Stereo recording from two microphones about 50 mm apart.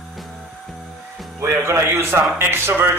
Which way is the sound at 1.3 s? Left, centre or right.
Right.